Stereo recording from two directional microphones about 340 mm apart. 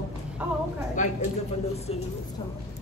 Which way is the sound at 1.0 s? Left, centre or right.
Left.